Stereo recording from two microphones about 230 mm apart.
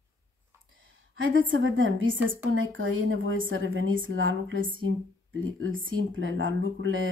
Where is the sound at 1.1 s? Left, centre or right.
Right.